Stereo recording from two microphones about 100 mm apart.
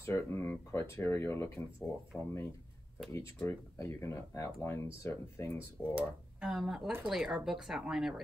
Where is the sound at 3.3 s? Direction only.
30° left (ahead or behind).